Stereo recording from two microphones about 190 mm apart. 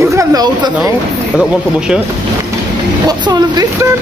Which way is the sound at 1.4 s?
5° right (ahead or behind).